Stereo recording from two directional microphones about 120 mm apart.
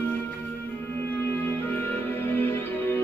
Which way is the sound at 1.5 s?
15° left (ahead or behind).